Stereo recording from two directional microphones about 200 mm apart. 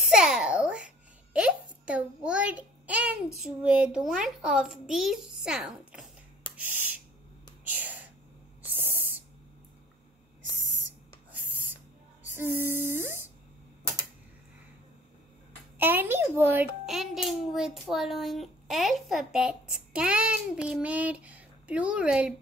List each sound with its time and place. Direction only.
0.1 s babbling: 5° right (ahead or behind)
3.4 s a child's voice: 5° right (ahead or behind)
6.5 s a sound: 10° right (ahead or behind)
7.7 s whispering: 10° right (ahead or behind)
8.6 s owl: 10° right (ahead or behind)
11.3 s owl: 10° right (ahead or behind)
12.4 s humming: 10° right (ahead or behind)
15.8 s a child's voice: 10° right (ahead or behind)